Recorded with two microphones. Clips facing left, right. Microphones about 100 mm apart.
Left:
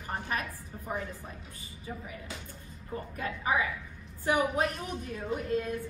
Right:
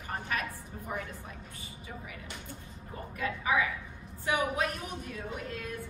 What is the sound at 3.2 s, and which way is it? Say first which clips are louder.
A woman's voice: right 1 dB; 35° left (ahead or behind).